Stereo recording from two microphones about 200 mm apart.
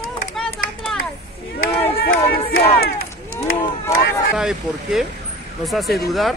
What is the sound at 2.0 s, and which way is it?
Crowd, 50° left (ahead or behind).